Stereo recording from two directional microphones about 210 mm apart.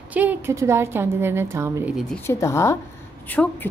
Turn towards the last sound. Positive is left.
turn(degrees=5)  # may be behind; listen again after turning